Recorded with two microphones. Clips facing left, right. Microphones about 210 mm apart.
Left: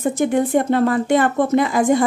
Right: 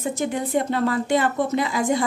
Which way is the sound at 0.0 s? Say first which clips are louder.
Left 7 dB; 50° left (ahead or behind).